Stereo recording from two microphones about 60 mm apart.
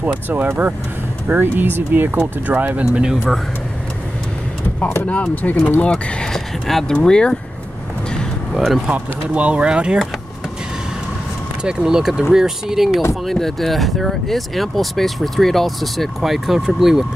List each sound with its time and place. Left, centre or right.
0.0 s speech: right
2.8 s speech: centre
5.0 s speech: left
8.5 s speech: centre
8.8 s speech: right
11.6 s speech: centre